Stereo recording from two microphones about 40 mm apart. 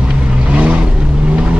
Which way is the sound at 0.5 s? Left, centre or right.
Right.